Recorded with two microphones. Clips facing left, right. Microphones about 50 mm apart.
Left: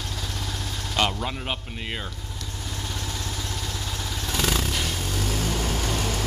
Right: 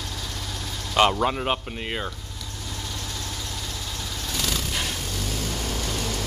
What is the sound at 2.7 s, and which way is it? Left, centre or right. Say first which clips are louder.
Vehicle: left 1 dB; centre.